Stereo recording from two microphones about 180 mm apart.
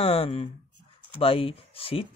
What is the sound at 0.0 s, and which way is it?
Speech, 30° left (ahead or behind).